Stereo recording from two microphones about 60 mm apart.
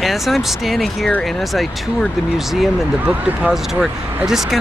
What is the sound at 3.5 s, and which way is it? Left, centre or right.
Speech, centre.